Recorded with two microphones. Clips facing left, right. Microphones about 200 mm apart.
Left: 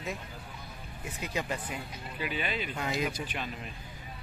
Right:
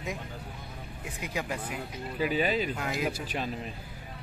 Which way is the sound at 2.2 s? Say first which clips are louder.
Right 7 dB; 40° right (ahead or behind).